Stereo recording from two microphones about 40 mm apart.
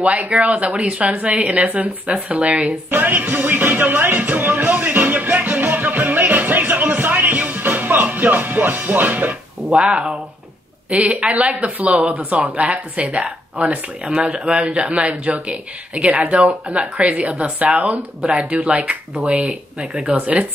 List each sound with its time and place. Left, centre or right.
0.0 s speech: right
2.9 s music: right
7.3 s music: right
9.7 s speech: right